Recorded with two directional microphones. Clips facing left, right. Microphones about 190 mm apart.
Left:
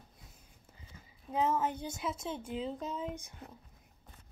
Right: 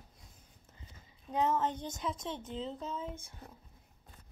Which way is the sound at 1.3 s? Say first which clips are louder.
Even; 5° left (ahead or behind).